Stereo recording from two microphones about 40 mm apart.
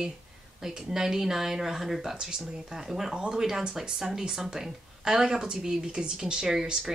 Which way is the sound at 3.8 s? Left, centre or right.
Centre.